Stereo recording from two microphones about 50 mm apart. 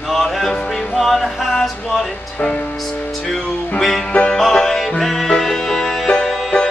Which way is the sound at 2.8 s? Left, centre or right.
Centre.